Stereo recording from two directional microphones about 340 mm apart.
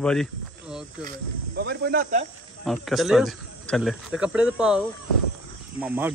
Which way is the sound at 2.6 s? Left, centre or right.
Centre.